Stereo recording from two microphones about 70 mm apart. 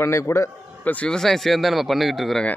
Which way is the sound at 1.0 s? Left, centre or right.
Centre.